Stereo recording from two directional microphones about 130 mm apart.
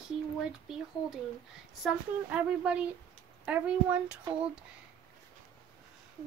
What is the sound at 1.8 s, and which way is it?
Speech, centre (ahead or behind).